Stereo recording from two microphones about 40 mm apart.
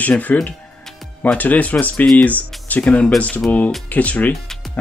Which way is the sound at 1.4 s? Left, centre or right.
Left.